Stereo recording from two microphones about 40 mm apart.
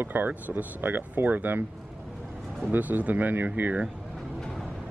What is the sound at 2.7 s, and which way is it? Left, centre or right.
Speech, right.